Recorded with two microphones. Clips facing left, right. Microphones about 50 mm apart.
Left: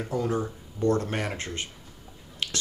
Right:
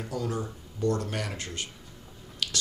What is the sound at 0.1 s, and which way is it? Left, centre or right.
Speech, left.